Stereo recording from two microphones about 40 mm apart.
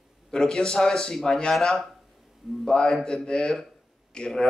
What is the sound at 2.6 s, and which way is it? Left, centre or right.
Speech, centre.